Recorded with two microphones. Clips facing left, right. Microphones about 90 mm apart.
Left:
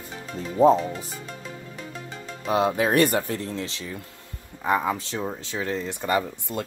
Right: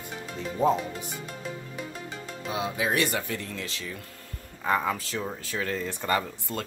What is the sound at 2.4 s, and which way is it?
Speech, 55° left (ahead or behind).